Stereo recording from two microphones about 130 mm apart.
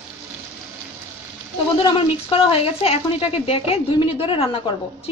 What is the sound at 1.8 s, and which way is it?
Speech, 45° left (ahead or behind).